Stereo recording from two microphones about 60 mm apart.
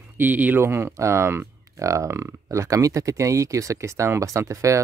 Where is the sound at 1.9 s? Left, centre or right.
Right.